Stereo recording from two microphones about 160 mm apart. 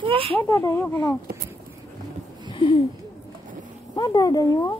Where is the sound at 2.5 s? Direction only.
30° left (ahead or behind).